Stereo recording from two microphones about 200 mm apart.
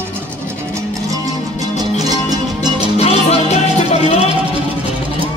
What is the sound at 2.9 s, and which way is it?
Music, 30° left (ahead or behind).